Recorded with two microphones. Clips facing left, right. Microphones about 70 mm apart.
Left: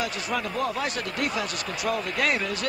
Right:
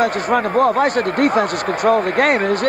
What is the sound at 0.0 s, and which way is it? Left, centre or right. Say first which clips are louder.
Speech: right 12 dB; right.